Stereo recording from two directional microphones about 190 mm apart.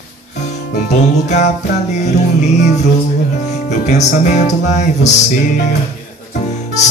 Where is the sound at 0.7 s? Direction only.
40° left (ahead or behind).